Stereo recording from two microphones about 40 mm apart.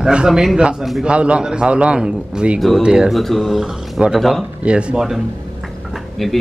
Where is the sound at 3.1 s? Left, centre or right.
Centre.